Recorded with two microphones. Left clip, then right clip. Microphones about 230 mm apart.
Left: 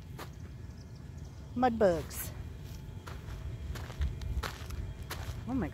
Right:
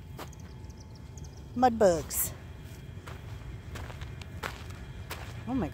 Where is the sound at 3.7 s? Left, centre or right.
Centre.